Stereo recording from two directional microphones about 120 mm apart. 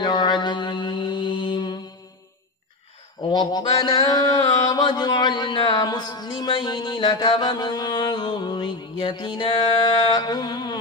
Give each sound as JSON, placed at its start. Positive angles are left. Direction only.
{"t": 0.0, "sound": "mantra", "side_deg": 40}
{"t": 3.2, "sound": "mantra", "side_deg": 35}